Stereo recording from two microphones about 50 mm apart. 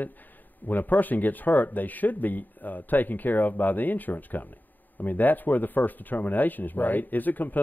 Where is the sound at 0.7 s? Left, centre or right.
Left.